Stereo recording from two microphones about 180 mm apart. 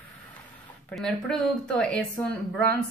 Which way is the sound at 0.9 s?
5° left (ahead or behind).